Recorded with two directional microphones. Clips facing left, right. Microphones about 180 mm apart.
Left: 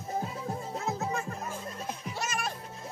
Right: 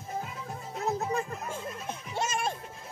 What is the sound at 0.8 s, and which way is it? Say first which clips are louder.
Music: right 4 dB; 35° right (ahead or behind).